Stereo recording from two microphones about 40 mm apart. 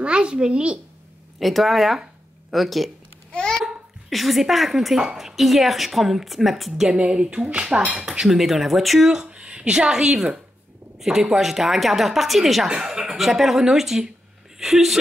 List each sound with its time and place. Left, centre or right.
0.0 s speech: right
1.4 s speech: centre
3.3 s babbling: left
4.1 s speech: centre
6.9 s speech: right
8.3 s speech: centre
9.1 s speech: right; by 12.6 s centre
12.6 s speech: centre